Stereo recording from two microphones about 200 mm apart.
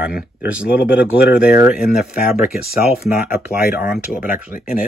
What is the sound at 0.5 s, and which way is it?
Speech, 5° right (ahead or behind).